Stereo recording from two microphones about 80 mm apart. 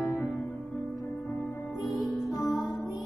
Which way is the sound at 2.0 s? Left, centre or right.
Centre.